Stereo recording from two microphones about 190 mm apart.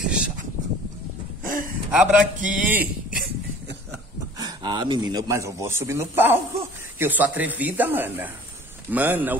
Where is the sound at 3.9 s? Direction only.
20° right (ahead or behind).